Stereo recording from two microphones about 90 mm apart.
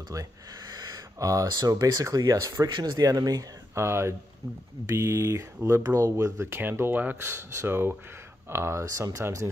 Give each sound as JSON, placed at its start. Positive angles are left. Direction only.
{"t": 0.1, "sound": "speech", "side_deg": -40}
{"t": 2.7, "sound": "speech", "side_deg": -50}
{"t": 3.7, "sound": "speech", "side_deg": -30}